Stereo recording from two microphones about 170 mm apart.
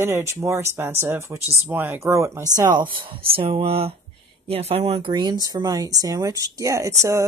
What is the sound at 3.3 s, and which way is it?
Speech, 30° right (ahead or behind).